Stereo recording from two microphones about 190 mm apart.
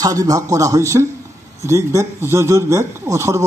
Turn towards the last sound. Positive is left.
turn(degrees=-15)  # may be behind; listen again after turning